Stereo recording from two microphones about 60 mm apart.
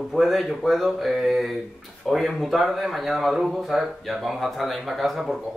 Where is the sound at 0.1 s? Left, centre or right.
Centre.